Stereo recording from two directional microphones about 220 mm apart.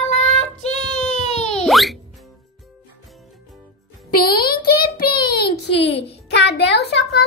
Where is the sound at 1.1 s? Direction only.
30° left (ahead or behind).